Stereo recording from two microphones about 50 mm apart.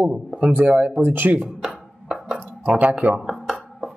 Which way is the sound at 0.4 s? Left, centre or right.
Right.